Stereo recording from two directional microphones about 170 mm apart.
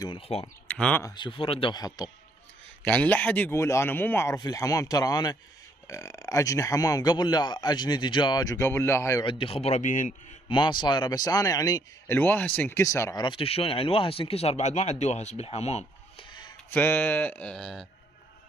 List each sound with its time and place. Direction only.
0.0 s speech: 30° left (ahead or behind)
0.7 s speech: 5° left (ahead or behind)
1.0 s speech: 25° left (ahead or behind)
2.8 s speech: 10° left (ahead or behind)
9.2 s speech: 30° left (ahead or behind); by 10.1 s 50° left (ahead or behind)
10.5 s speech: 25° left (ahead or behind)
12.2 s speech: 10° left (ahead or behind); by 16.5 s 25° left (ahead or behind)
16.7 s speech: 10° left (ahead or behind)